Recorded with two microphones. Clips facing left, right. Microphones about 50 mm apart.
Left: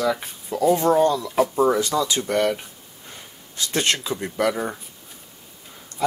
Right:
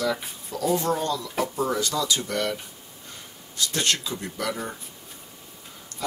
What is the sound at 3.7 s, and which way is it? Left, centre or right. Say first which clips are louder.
Speech: left 4 dB; left.